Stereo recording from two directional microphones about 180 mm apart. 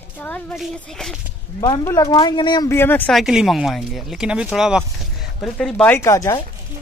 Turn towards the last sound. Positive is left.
turn(degrees=15)  # may be behind; listen again after turning